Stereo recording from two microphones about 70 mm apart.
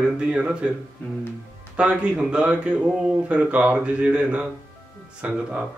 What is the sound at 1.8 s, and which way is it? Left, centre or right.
A man's voice, centre.